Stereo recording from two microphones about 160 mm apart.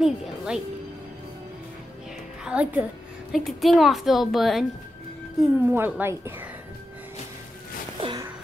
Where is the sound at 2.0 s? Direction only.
5° right (ahead or behind).